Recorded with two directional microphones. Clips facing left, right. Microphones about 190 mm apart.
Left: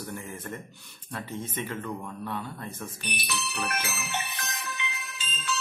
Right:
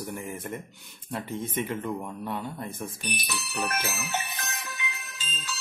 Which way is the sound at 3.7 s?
40° right (ahead or behind).